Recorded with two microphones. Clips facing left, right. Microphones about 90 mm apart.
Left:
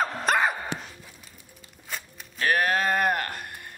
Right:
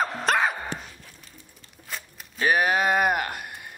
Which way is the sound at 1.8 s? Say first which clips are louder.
Even; centre (ahead or behind).